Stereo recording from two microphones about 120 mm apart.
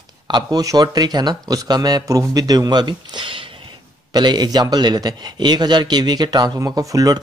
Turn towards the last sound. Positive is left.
turn(degrees=-30)  # may be behind; listen again after turning